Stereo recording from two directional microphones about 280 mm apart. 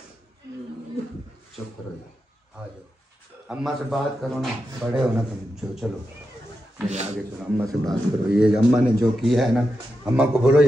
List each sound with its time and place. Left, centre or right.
3.4 s speech: centre
6.9 s speech: right
7.3 s speech: centre